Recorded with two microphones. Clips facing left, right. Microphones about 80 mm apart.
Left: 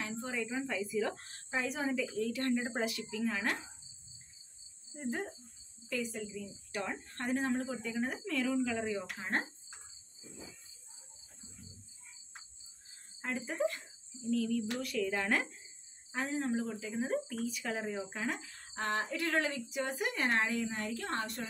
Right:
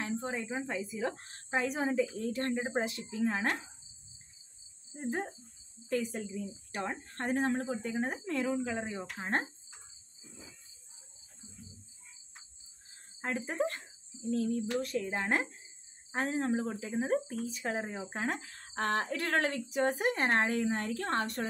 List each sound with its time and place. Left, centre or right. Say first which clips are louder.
0.0 s a woman's voice: right 2 dB; right
4.9 s a woman's voice: right 2 dB; right
6.3 s speech: right 2 dB; right
7.3 s speech: right 2 dB; right
7.6 s a woman's voice: right 2 dB; right
8.2 s speech: even; right
13.4 s a woman's voice: even; right
16.1 s speech: right 3 dB; right